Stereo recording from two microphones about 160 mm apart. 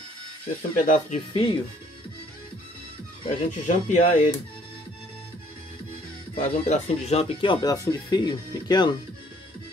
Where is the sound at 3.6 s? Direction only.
50° left (ahead or behind).